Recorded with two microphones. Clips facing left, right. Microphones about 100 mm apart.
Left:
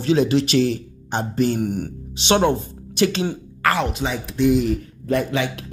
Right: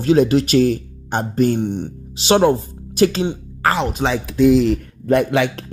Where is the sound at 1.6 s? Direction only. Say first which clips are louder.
Right 2 dB; 25° right (ahead or behind).